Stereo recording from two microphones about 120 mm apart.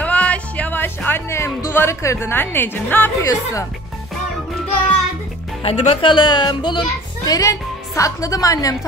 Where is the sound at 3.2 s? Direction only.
25° left (ahead or behind).